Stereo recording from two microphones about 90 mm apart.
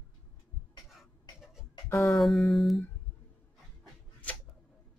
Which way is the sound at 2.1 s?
Centre (ahead or behind).